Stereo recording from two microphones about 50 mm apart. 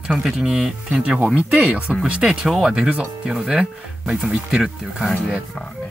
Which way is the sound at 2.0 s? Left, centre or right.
Centre.